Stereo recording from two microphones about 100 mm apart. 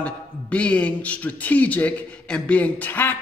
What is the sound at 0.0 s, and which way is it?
A man's voice, 10° left (ahead or behind).